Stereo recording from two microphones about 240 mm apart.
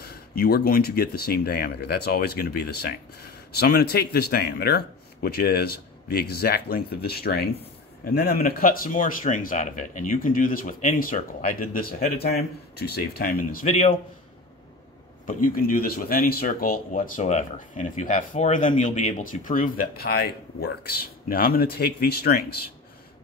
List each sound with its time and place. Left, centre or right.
0.0 s speech: left
15.2 s speech: left